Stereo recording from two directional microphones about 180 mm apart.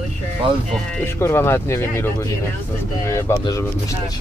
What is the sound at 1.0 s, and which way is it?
Speech, 15° left (ahead or behind).